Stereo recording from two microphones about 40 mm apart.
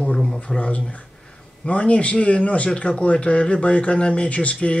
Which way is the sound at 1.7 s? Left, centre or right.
Left.